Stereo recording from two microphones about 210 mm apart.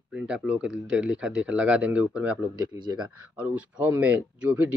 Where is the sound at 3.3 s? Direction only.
10° right (ahead or behind).